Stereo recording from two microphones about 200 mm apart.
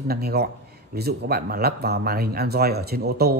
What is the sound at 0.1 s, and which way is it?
Speech, 50° right (ahead or behind).